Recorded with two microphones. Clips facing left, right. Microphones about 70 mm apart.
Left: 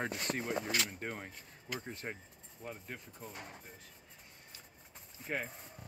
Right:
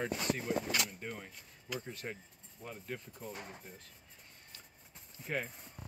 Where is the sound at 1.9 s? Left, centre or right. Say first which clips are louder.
Even; left.